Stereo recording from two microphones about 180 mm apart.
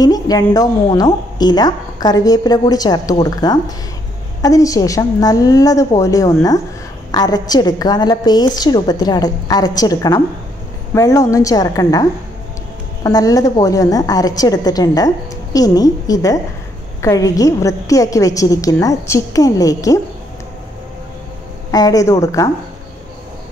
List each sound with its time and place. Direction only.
0.0 s a woman's voice: 20° left (ahead or behind)
21.6 s a woman's voice: 20° left (ahead or behind)